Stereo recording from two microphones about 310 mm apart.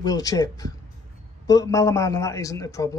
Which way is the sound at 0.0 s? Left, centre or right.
Centre.